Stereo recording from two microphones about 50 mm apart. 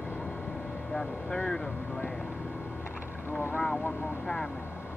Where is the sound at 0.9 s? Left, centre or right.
Centre.